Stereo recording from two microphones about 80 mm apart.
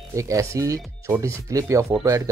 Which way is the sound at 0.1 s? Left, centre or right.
Right.